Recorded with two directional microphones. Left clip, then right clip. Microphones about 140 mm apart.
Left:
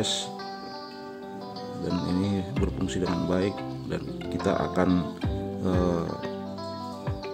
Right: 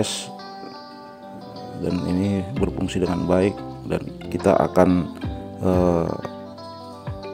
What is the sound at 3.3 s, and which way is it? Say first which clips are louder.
Speech: right 7 dB; 45° right (ahead or behind).